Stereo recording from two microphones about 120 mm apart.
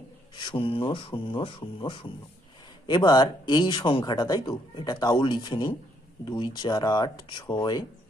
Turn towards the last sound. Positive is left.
turn(degrees=35)  # may be behind; listen again after turning